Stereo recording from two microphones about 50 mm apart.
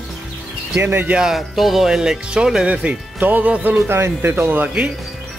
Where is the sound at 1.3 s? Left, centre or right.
Centre.